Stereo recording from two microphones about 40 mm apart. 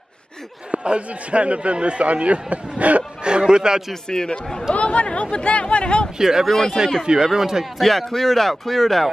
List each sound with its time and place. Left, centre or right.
0.7 s a man's voice: right
3.3 s a man's voice: right
3.9 s speech: centre
4.7 s speech: left
6.1 s speech: centre
6.4 s speech: centre
7.3 s speech: centre
7.8 s speech: centre